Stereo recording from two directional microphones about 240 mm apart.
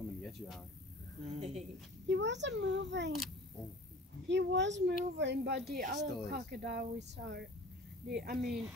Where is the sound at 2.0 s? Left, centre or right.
Right.